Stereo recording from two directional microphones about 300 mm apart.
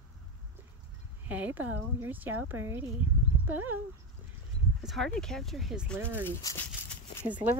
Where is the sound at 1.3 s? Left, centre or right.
Centre.